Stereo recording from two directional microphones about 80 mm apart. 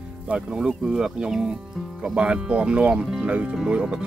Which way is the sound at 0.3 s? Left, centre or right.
Centre.